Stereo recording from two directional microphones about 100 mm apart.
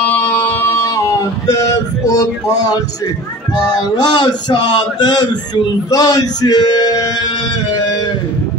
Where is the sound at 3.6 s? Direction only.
45° left (ahead or behind).